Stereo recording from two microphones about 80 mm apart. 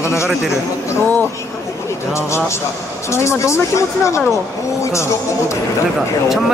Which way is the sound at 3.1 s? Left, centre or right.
Left.